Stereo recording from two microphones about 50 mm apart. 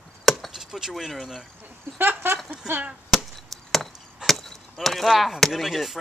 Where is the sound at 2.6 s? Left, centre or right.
Centre.